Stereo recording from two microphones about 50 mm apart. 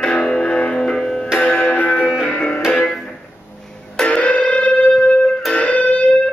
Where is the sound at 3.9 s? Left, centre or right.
Left.